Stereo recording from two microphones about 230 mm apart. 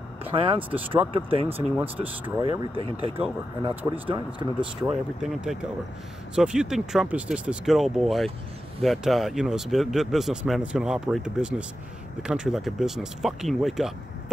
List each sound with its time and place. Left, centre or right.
0.2 s speech: right
5.2 s speech: centre